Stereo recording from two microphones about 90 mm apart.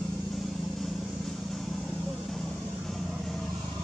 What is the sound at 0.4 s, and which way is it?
Vehicle, centre (ahead or behind).